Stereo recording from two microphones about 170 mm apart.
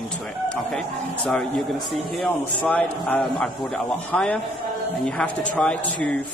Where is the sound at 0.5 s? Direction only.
5° left (ahead or behind).